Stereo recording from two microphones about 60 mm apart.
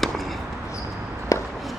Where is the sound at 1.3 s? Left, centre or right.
Left.